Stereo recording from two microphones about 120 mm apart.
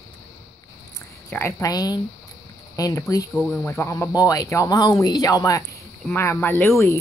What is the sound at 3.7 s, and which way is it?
Speech, 25° left (ahead or behind).